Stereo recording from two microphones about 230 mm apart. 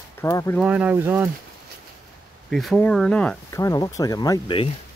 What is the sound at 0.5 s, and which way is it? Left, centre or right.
Speech, centre.